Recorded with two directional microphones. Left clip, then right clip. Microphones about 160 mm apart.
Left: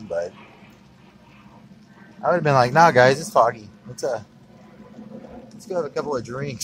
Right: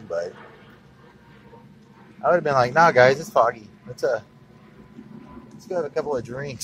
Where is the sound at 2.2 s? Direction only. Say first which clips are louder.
Left 1 dB; 25° left (ahead or behind).